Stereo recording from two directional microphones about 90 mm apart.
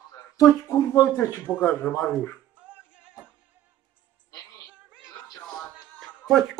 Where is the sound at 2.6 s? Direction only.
15° right (ahead or behind).